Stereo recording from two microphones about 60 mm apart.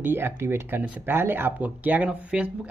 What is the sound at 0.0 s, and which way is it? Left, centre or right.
Speech, right.